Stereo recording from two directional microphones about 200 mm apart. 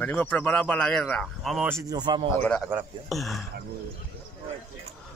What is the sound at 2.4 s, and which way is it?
Speech, 5° left (ahead or behind).